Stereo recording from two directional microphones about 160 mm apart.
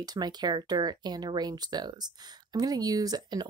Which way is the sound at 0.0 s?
25° right (ahead or behind).